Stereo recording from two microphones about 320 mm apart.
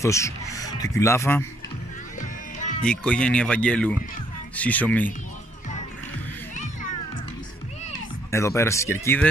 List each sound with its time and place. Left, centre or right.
0.0 s speech: centre
2.8 s speech: centre
8.3 s speech: centre